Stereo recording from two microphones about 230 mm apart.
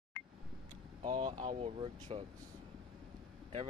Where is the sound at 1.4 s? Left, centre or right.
Right.